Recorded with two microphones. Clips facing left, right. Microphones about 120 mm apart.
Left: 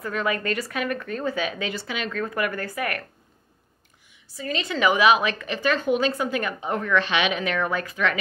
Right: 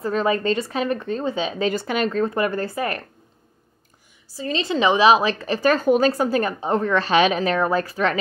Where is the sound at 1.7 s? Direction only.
45° right (ahead or behind).